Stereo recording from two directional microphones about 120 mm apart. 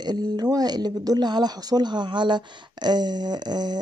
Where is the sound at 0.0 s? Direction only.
35° right (ahead or behind).